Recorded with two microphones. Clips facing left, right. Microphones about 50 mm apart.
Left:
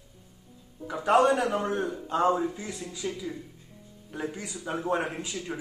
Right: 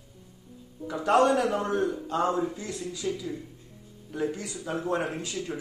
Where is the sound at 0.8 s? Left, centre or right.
Centre.